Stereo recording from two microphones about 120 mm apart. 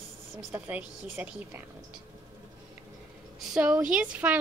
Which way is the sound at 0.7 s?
10° right (ahead or behind).